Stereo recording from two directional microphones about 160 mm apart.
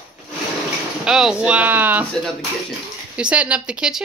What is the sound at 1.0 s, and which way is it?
Speech, 5° right (ahead or behind).